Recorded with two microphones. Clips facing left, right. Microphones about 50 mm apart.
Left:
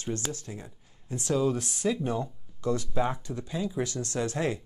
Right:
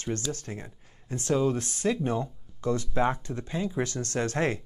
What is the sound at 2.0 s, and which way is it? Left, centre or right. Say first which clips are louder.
Speech: right 1 dB; right.